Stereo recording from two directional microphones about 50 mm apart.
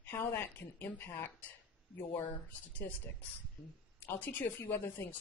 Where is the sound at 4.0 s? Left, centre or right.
Left.